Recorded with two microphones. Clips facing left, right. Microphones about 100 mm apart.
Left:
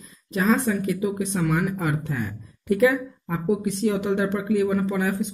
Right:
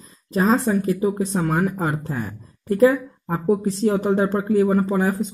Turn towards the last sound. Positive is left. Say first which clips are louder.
# right 4 dB
turn(degrees=-35)  # may be behind; listen again after turning